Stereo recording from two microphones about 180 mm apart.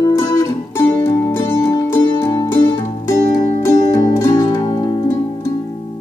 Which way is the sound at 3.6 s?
20° left (ahead or behind).